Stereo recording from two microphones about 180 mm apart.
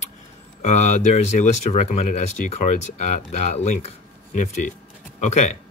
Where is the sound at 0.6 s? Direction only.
40° left (ahead or behind).